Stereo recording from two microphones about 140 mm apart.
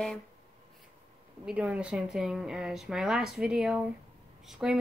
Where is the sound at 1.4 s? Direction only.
10° right (ahead or behind).